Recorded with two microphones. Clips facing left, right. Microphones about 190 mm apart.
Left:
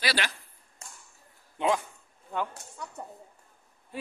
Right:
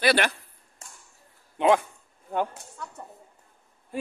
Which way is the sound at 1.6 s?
60° right (ahead or behind).